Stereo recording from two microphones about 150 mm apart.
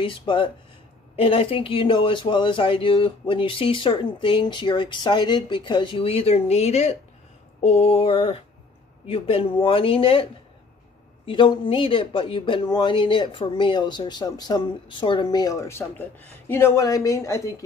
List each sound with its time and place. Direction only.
0.0 s speech: 35° left (ahead or behind)
11.2 s speech: 35° left (ahead or behind)